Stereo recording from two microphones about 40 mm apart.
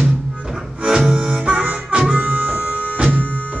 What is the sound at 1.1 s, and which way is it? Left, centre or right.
Harmonica, right.